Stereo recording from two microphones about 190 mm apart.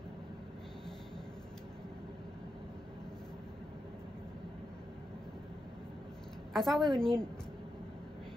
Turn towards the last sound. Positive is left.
turn(degrees=5)  # may be behind; listen again after turning